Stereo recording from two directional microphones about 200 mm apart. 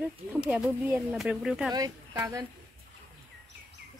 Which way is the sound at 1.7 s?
20° right (ahead or behind).